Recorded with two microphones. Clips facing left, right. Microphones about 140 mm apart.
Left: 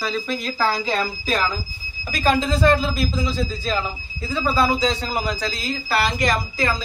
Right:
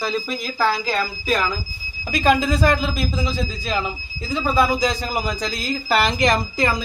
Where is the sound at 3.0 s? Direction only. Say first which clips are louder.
Left 1 dB; 20° right (ahead or behind).